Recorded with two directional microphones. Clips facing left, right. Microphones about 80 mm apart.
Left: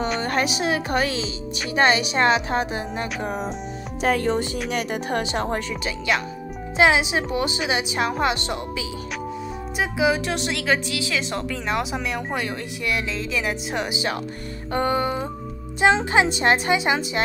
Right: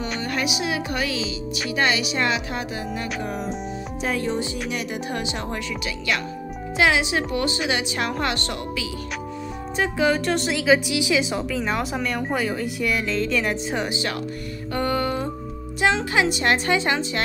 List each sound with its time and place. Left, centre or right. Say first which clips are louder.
0.2 s a woman's voice: left 3 dB; left
4.0 s speech: left 4 dB; left
6.8 s a woman's voice: left 2 dB; left
9.8 s speech: even; centre
10.9 s a woman's voice: right 4 dB; centre